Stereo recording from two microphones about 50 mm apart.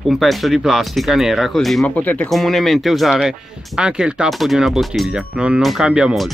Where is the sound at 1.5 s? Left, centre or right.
Centre.